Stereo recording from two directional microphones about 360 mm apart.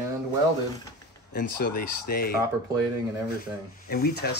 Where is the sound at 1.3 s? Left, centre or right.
Left.